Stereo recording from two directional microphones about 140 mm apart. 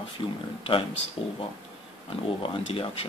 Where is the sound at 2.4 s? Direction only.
40° left (ahead or behind).